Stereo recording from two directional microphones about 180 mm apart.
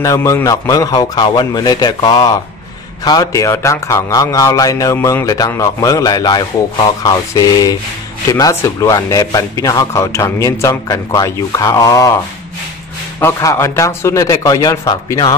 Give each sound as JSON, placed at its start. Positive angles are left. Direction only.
{"t": 0.0, "sound": "speech", "side_deg": 15}
{"t": 13.2, "sound": "speech", "side_deg": 15}